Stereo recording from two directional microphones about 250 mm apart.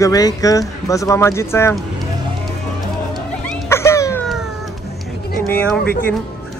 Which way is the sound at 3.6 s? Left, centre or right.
Centre.